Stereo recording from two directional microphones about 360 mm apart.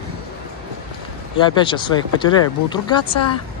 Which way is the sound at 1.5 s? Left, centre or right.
Centre.